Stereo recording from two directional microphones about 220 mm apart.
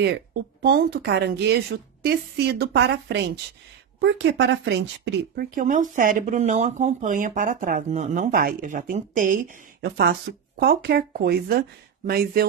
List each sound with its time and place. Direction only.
0.0 s speech: 50° right (ahead or behind)